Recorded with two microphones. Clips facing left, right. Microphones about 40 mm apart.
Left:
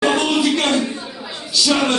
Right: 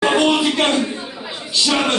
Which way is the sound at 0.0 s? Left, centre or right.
Right.